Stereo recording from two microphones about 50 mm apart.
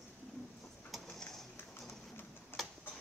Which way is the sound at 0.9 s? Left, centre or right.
Centre.